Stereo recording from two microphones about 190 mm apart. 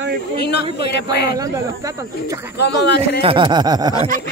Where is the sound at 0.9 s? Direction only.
60° left (ahead or behind).